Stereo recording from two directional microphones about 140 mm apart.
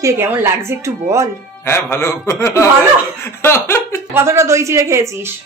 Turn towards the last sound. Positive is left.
turn(degrees=-20)  # may be behind; listen again after turning